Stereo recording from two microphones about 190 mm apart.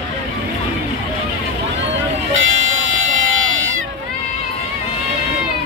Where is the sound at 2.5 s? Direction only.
90° right.